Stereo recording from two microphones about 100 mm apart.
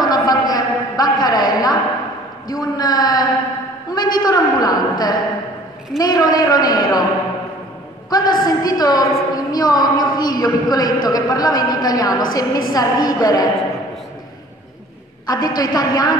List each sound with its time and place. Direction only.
0.0 s a sound: 40° left (ahead or behind)
5.9 s a woman's voice: 40° left (ahead or behind)
8.1 s a woman's voice: 40° left (ahead or behind)
15.2 s a woman's voice: 40° left (ahead or behind)